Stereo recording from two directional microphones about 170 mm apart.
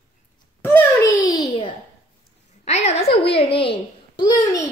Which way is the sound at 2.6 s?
40° left (ahead or behind).